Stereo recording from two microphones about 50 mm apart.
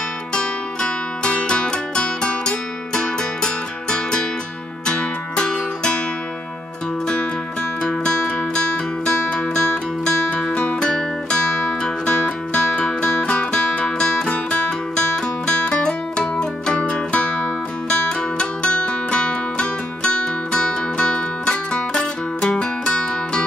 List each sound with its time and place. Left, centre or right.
0.3 s music: left
7.8 s music: centre